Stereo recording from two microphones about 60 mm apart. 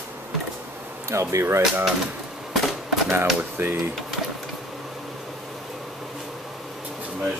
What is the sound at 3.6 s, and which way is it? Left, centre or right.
Speech, right.